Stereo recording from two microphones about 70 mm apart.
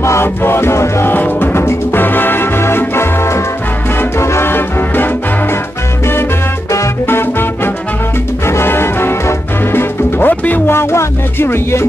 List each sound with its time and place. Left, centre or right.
0.0 s music: left
1.1 s music: left
7.1 s music: left